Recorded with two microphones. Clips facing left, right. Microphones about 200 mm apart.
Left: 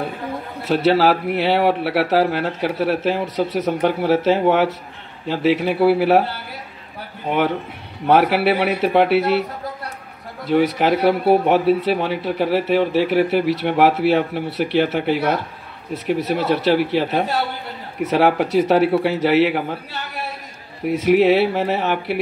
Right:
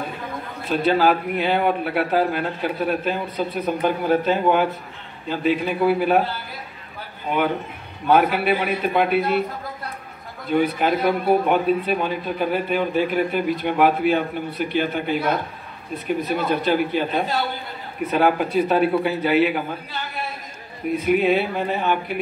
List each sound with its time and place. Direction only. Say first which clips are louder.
0.7 s speech: left 3 dB; 85° left
8.1 s a man's voice: left 2 dB; 80° left
10.4 s a man's voice: left 3 dB; 90° left
15.9 s speech: left 3 dB; 90° left
20.9 s speech: left 4 dB; 85° left